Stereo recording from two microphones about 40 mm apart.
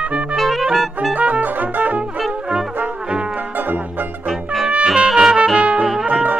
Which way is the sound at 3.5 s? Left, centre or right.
Right.